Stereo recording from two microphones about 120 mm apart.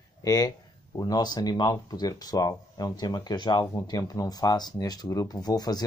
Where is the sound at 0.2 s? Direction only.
30° left (ahead or behind).